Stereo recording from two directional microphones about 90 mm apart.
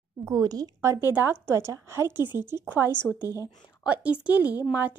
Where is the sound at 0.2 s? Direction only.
45° right (ahead or behind).